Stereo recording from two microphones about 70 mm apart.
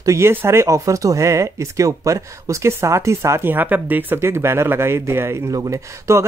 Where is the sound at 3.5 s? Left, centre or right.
Right.